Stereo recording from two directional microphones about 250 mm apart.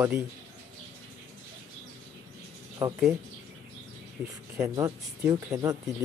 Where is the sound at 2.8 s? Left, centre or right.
Centre.